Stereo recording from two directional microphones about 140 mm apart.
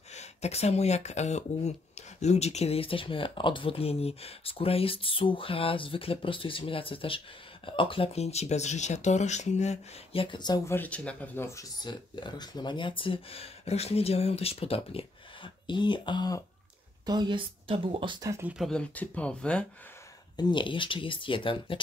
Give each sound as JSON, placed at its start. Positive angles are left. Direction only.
{"t": 0.1, "sound": "speech", "side_deg": 50}
{"t": 10.7, "sound": "speech", "side_deg": 10}
{"t": 11.8, "sound": "speech", "side_deg": 30}
{"t": 17.0, "sound": "speech", "side_deg": -30}
{"t": 18.7, "sound": "speech", "side_deg": 10}
{"t": 20.3, "sound": "speech", "side_deg": 35}